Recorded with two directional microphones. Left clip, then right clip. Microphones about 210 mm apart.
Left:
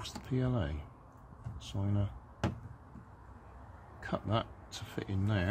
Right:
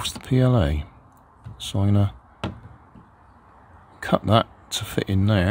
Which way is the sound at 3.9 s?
55° right (ahead or behind).